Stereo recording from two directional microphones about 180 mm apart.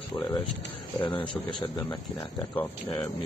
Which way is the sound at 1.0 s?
30° left (ahead or behind).